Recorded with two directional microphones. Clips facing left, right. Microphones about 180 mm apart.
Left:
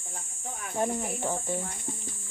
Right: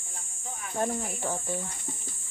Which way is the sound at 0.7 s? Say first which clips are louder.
Left 1 dB; 5° left (ahead or behind).